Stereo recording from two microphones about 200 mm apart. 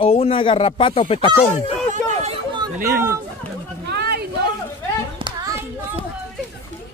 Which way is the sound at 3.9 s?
55° right (ahead or behind).